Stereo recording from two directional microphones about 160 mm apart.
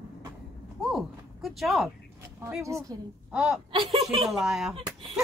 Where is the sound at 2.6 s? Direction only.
20° right (ahead or behind).